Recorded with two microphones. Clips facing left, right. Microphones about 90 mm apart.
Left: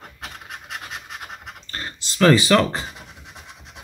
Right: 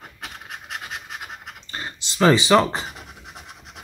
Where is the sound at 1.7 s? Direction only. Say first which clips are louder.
Even; 15° right (ahead or behind).